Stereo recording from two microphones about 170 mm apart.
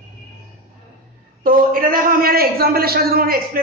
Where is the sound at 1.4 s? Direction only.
60° right (ahead or behind).